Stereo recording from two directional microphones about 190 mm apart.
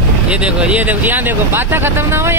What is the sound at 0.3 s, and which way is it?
Speech, 5° right (ahead or behind).